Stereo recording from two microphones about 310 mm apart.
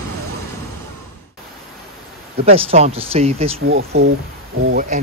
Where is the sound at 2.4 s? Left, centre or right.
Centre.